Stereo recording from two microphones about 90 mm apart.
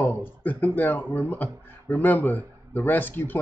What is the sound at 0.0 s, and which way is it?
Speech, 20° left (ahead or behind).